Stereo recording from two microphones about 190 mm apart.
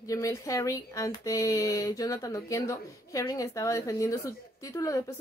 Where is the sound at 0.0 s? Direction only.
15° left (ahead or behind).